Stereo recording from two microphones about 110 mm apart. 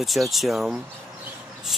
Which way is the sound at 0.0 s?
Centre (ahead or behind).